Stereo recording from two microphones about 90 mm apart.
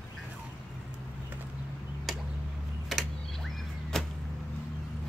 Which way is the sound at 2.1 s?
Centre (ahead or behind).